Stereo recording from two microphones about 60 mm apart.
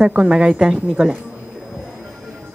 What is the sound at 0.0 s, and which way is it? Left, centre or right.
A woman's voice, centre.